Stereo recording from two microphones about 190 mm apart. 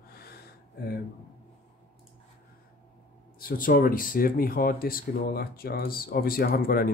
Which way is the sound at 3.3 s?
50° left (ahead or behind).